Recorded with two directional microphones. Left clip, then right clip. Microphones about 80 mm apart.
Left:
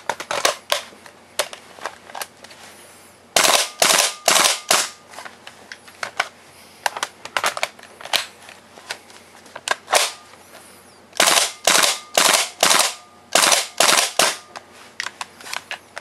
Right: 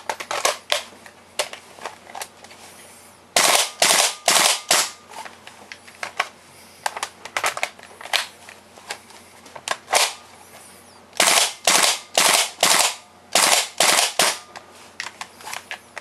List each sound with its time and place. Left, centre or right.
0.0 s scissors: left
1.3 s a sound: left
3.3 s gunshot: left
5.7 s typing: left
6.8 s crushing: left
9.9 s a sound: left
11.1 s gunshot: left